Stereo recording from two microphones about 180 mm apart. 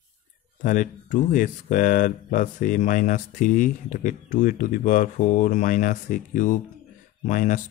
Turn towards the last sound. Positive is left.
turn(degrees=45)  # may be behind; listen again after turning